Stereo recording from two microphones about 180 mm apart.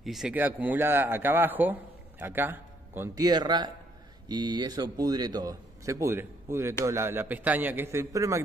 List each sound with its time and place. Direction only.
0.0 s a man's voice: centre (ahead or behind)